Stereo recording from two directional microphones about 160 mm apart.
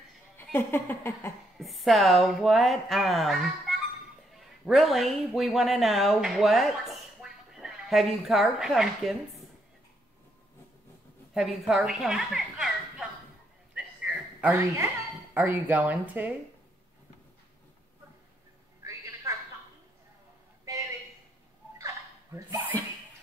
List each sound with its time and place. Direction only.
0.4 s speech: 15° left (ahead or behind)
1.6 s speech: centre (ahead or behind)
11.3 s a woman's voice: centre (ahead or behind)
13.7 s a sound: 5° right (ahead or behind)
15.3 s speech: 10° right (ahead or behind)
21.7 s a sound: 20° right (ahead or behind)